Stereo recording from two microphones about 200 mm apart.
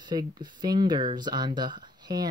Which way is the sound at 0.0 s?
20° right (ahead or behind).